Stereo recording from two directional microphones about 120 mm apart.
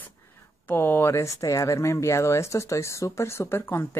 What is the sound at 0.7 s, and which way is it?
Speech, 15° left (ahead or behind).